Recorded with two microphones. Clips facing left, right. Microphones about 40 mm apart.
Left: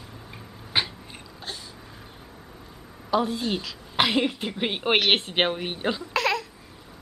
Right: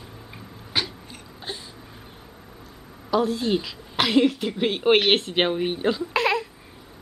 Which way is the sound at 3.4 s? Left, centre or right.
Centre.